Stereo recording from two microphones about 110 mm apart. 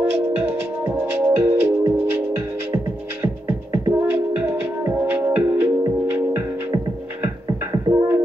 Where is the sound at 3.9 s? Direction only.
20° right (ahead or behind).